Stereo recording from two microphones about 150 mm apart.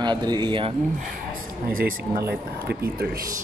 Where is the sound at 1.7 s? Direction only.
80° right.